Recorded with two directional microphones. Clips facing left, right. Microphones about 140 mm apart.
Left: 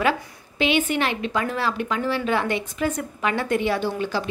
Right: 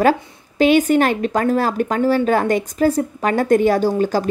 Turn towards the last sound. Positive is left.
turn(degrees=-40)  # may be behind; listen again after turning